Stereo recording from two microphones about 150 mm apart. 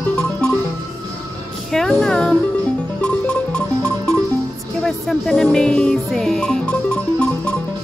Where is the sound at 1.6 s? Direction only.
Centre (ahead or behind).